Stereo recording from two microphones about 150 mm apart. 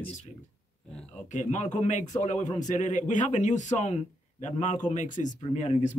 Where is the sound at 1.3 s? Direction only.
55° left (ahead or behind).